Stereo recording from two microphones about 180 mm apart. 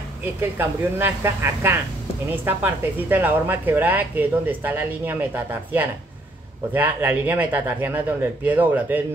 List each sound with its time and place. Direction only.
0.4 s a woman's voice: 10° right (ahead or behind)